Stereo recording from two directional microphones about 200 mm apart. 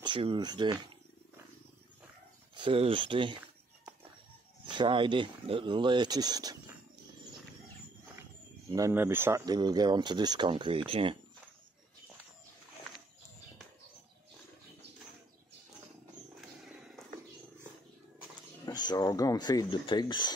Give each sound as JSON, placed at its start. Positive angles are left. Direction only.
{"t": 0.0, "sound": "speech", "side_deg": -25}
{"t": 2.5, "sound": "speech", "side_deg": -25}
{"t": 4.6, "sound": "speech", "side_deg": -25}
{"t": 8.7, "sound": "speech", "side_deg": -15}
{"t": 18.7, "sound": "speech", "side_deg": 20}